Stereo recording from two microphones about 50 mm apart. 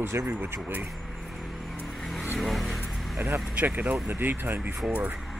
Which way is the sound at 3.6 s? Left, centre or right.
Right.